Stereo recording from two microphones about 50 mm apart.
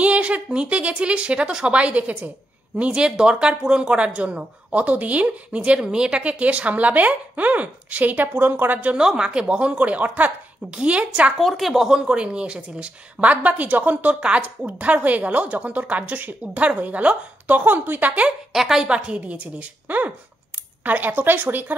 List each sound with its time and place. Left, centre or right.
0.0 s speech: right
8.9 s speech: centre
11.3 s speech: centre; by 18.2 s right
18.5 s a woman's voice: centre
18.9 s speech: right